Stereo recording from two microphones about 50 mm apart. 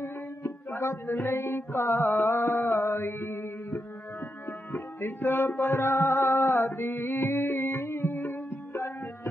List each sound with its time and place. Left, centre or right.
0.7 s mantra: left
2.9 s mantra: left
4.7 s music: left
5.8 s music: left
6.7 s mantra: left